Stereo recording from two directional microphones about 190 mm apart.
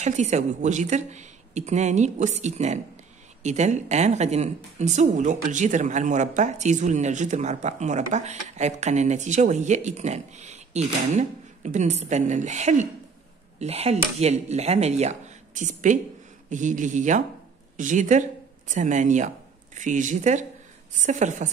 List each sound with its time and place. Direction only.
0.0 s speech: 40° right (ahead or behind)